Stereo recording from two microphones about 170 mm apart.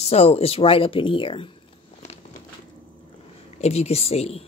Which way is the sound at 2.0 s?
40° left (ahead or behind).